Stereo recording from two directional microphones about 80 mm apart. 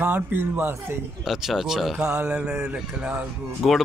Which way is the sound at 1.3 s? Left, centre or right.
Centre.